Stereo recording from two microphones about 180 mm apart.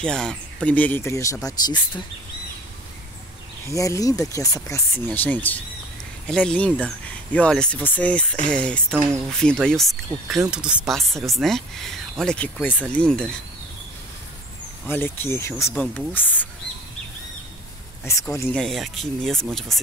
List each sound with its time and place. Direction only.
0.0 s speech: 5° left (ahead or behind)
3.6 s speech: 15° left (ahead or behind)
14.9 s speech: 10° left (ahead or behind)
18.0 s speech: 15° left (ahead or behind)
18.6 s speech: centre (ahead or behind)